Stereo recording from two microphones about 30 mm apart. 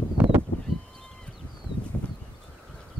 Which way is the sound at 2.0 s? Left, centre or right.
Left.